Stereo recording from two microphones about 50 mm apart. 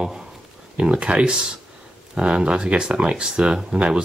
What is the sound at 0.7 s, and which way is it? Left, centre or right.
Speech, right.